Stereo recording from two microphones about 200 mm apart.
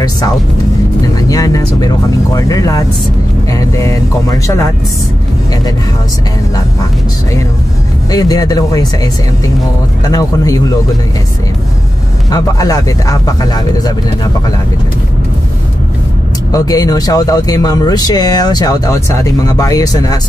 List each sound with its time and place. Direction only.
1.3 s speech: 20° left (ahead or behind)
8.1 s speech: 20° left (ahead or behind)
12.3 s speech: 20° left (ahead or behind)
16.5 s speech: 20° left (ahead or behind)